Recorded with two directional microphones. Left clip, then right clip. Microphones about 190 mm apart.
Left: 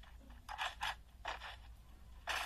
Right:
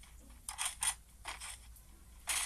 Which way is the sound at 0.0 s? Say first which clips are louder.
Right 2 dB; 20° left (ahead or behind).